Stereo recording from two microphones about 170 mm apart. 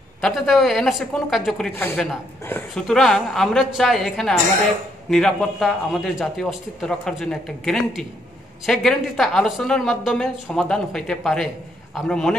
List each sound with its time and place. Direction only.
0.2 s speech: centre (ahead or behind)
1.8 s a woman's voice: 10° left (ahead or behind)